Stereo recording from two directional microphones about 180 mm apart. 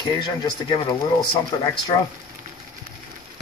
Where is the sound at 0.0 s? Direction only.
25° left (ahead or behind).